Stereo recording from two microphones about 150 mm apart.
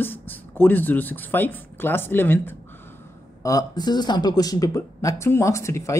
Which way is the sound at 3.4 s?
25° left (ahead or behind).